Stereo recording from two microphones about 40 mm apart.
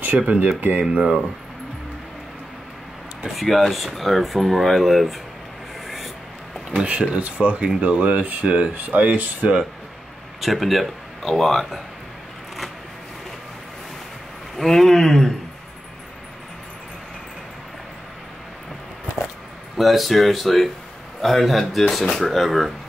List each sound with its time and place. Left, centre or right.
0.3 s speech: right
0.7 s speech: right
3.3 s speech: centre
6.9 s speech: right
7.2 s speech: right
8.7 s speech: right
10.4 s speech: centre
14.6 s speech: centre
19.8 s speech: centre